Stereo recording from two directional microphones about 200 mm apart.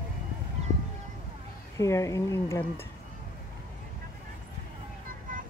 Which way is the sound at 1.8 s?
15° left (ahead or behind).